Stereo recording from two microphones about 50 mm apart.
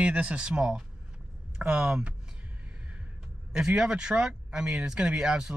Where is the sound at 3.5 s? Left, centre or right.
Centre.